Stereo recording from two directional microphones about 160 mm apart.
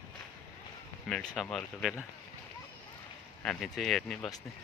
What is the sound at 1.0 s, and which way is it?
Speech, 5° left (ahead or behind).